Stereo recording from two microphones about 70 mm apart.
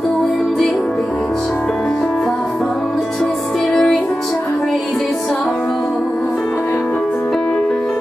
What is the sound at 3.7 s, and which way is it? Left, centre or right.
Music, centre.